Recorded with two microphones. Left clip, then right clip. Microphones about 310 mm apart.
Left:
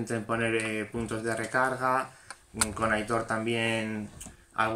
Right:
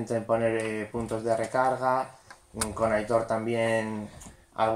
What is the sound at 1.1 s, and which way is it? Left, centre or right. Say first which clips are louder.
Speech: right 3 dB; left.